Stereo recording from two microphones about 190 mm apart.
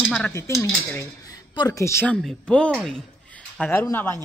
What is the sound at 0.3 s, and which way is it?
Speech, 15° left (ahead or behind).